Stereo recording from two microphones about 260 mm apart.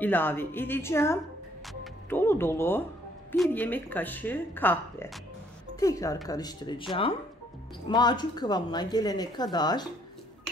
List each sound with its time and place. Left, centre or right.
0.0 s speech: centre